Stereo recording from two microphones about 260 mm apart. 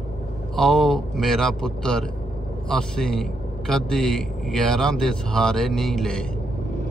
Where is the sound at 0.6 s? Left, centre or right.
Centre.